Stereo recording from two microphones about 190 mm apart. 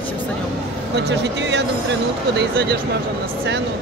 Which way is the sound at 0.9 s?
65° right (ahead or behind).